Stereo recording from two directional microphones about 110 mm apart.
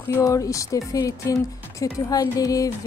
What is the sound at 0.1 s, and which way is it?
A woman's voice, 30° left (ahead or behind).